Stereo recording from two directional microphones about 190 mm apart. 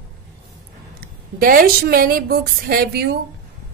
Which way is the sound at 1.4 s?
50° right (ahead or behind).